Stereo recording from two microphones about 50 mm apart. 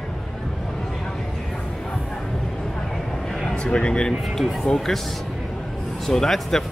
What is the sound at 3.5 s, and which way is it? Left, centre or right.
Speech, centre.